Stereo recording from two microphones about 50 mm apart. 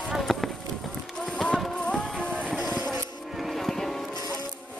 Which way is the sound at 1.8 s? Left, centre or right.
Centre.